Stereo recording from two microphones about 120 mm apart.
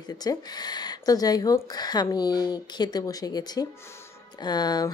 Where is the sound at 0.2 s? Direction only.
35° left (ahead or behind).